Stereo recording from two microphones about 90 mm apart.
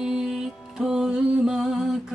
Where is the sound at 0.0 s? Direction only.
5° right (ahead or behind).